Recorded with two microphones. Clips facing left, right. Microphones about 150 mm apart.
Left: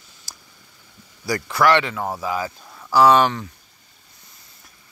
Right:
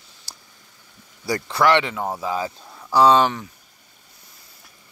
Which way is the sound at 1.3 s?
25° right (ahead or behind).